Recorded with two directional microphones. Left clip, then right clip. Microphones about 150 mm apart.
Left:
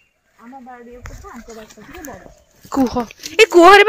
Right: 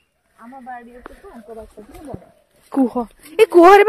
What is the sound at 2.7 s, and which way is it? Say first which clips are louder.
A woman's voice: left 1 dB; 5° right (ahead or behind).